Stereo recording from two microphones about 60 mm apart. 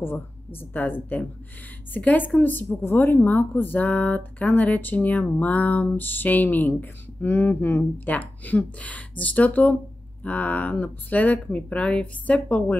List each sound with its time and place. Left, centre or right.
0.0 s a woman's voice: left